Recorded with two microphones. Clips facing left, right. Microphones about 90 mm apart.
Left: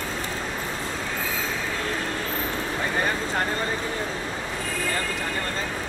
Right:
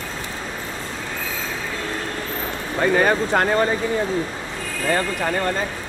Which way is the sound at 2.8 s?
80° right.